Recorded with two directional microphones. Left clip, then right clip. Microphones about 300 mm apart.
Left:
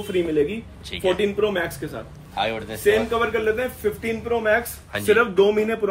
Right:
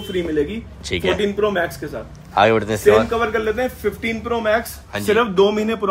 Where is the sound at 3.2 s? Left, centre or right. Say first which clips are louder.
Right 2 dB; centre.